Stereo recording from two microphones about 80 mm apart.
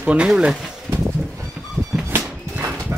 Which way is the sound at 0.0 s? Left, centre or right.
Centre.